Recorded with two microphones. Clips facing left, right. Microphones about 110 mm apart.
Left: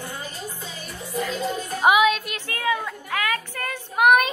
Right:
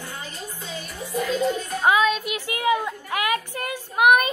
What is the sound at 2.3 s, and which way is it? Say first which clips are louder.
Speech: right 3 dB; 15° right (ahead or behind).